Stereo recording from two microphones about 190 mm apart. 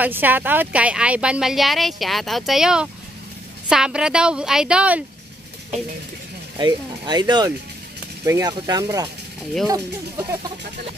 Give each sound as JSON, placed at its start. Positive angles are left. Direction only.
{"t": 0.0, "sound": "speech", "side_deg": -10}
{"t": 6.6, "sound": "speech", "side_deg": -20}